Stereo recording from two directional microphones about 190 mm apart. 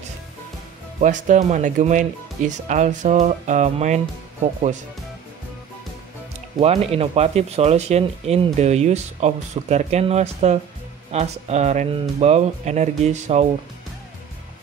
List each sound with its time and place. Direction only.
1.0 s speech: 40° right (ahead or behind)
6.6 s speech: 35° right (ahead or behind)